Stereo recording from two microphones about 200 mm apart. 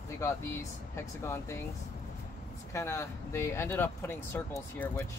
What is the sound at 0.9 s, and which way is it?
Speech, 15° left (ahead or behind).